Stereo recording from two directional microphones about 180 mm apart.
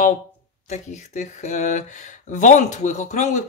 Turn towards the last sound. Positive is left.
turn(degrees=40)  # may be behind; listen again after turning